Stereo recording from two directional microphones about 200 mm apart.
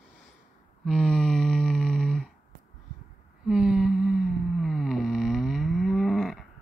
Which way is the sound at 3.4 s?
5° right (ahead or behind).